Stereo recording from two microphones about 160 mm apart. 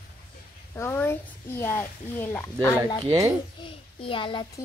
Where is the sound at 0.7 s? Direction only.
15° left (ahead or behind).